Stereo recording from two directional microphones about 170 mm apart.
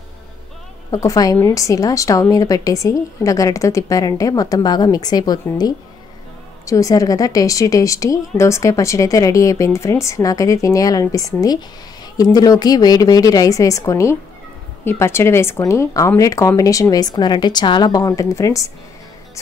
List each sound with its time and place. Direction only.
0.9 s a woman's voice: 20° left (ahead or behind)